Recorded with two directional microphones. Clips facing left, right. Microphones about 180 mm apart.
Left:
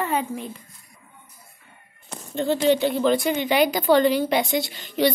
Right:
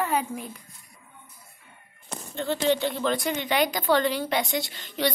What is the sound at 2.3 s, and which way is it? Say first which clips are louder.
A woman's voice: left 5 dB; 15° left (ahead or behind).